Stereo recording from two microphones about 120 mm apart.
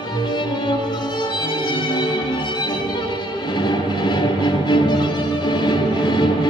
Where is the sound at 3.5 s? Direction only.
40° left (ahead or behind).